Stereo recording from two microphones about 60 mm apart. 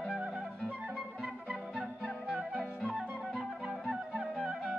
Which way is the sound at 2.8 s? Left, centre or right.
Centre.